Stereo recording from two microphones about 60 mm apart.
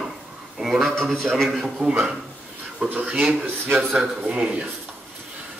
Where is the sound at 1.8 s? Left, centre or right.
Right.